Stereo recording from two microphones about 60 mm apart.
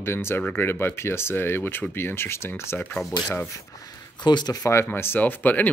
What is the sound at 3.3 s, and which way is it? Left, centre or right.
Speech, left.